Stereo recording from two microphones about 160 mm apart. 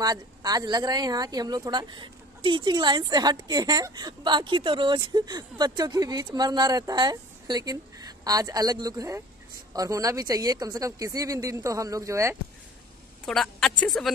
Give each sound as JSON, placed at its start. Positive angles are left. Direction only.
{"t": 0.0, "sound": "speech", "side_deg": -25}
{"t": 13.2, "sound": "a woman's voice", "side_deg": 0}